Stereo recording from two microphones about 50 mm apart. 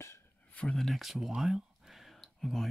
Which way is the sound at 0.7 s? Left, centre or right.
Centre.